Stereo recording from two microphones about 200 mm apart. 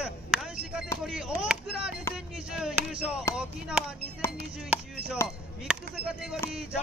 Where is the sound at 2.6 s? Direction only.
5° right (ahead or behind).